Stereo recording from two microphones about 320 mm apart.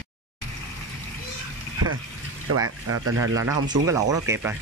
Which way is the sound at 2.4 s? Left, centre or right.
Right.